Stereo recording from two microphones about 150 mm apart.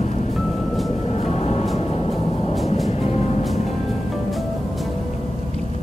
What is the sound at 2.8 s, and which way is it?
Music, 45° left (ahead or behind).